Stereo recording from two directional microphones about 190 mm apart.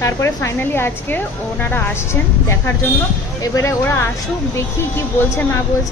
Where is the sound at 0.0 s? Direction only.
15° left (ahead or behind).